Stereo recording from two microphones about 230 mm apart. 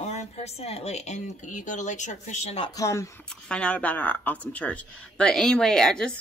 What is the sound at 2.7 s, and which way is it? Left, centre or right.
Speech, centre.